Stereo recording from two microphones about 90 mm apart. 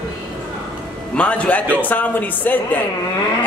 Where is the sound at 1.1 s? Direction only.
15° left (ahead or behind).